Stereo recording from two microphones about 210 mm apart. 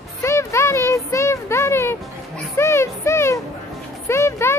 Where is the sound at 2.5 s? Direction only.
10° left (ahead or behind).